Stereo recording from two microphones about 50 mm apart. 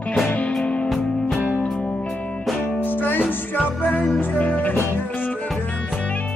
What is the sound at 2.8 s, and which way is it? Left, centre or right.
Music, left.